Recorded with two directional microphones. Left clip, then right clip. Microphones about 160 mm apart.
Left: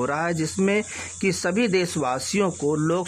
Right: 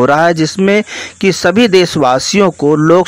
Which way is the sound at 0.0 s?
35° right (ahead or behind).